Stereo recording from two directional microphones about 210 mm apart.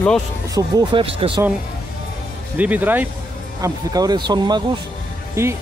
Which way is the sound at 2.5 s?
5° right (ahead or behind).